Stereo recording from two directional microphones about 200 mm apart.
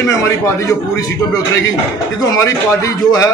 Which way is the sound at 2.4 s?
15° left (ahead or behind).